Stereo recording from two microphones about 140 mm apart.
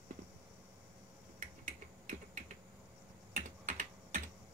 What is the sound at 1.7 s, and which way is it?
Typing, 65° right (ahead or behind).